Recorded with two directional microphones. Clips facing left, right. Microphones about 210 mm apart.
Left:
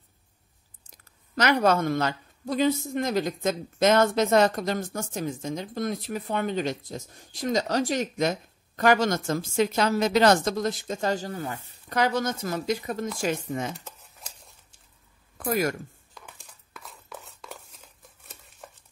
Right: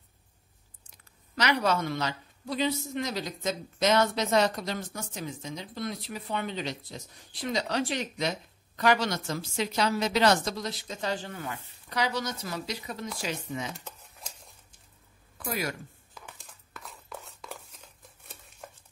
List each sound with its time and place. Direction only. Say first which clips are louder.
0.8 s speech: left 3 dB; 40° left (ahead or behind)
15.3 s speech: left 7 dB; 45° left (ahead or behind)
16.2 s a sound: even; centre (ahead or behind)